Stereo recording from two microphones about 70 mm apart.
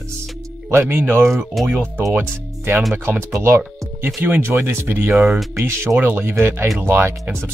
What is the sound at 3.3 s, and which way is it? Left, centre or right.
Speech, right.